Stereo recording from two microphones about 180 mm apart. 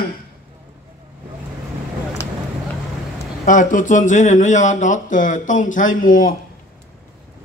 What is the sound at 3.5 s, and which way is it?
Speech, 45° left (ahead or behind).